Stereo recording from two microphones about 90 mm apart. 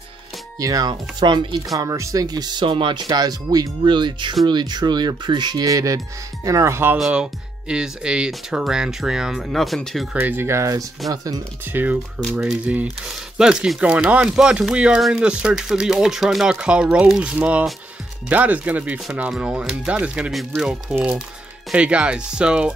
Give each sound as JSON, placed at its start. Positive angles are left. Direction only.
{"t": 0.6, "sound": "speech", "side_deg": -45}
{"t": 1.8, "sound": "speech", "side_deg": -35}
{"t": 2.6, "sound": "speech", "side_deg": -70}
{"t": 7.0, "sound": "speech", "side_deg": -10}
{"t": 10.1, "sound": "speech", "side_deg": -25}
{"t": 11.6, "sound": "speech", "side_deg": -20}
{"t": 12.2, "sound": "speech", "side_deg": -5}
{"t": 21.7, "sound": "speech", "side_deg": -10}